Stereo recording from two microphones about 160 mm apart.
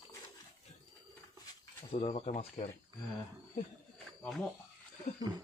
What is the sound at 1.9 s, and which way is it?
Speech, 40° left (ahead or behind).